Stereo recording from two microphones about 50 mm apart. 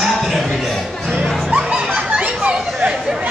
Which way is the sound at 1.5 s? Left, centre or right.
Right.